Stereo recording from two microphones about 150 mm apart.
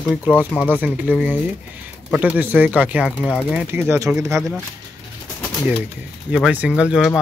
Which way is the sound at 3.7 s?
15° right (ahead or behind).